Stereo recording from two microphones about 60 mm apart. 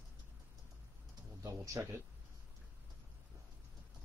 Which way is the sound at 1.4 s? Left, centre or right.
Right.